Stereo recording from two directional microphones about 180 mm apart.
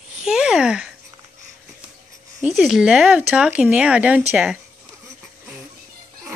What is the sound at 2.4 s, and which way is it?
Speech, centre (ahead or behind).